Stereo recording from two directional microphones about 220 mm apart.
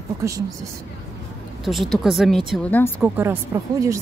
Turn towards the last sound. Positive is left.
turn(degrees=-15)  # may be behind; listen again after turning